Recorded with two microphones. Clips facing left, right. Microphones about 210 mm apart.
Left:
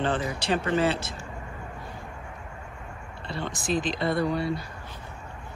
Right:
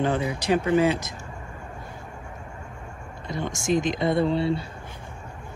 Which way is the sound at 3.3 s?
15° right (ahead or behind).